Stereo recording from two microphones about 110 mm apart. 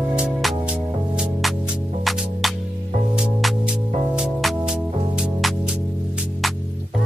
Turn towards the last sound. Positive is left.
turn(degrees=-10)  # may be behind; listen again after turning